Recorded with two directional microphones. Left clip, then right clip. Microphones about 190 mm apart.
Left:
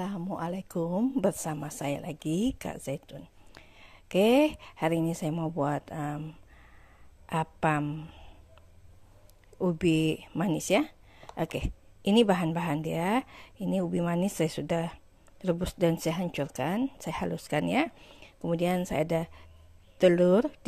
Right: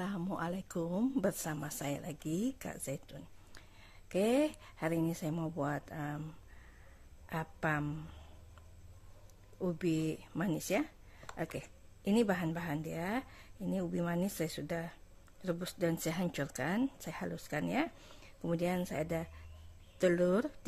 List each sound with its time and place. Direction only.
0.0 s speech: 10° left (ahead or behind)
7.2 s speech: 25° left (ahead or behind)
9.6 s speech: 30° left (ahead or behind)
17.9 s a sound: 15° left (ahead or behind)
18.5 s speech: 25° left (ahead or behind)